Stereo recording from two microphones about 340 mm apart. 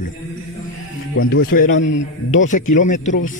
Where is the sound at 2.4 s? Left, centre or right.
Left.